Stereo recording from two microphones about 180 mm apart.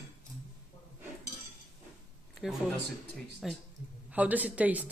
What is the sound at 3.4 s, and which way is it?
A woman's voice, centre (ahead or behind).